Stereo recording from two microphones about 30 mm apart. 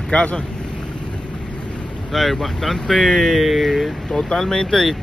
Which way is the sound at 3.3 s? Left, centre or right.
Centre.